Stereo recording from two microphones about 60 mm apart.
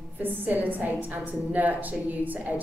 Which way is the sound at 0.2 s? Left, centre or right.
Right.